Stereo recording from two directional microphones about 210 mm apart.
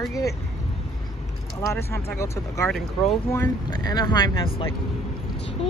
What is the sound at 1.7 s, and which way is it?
Speech, 10° left (ahead or behind).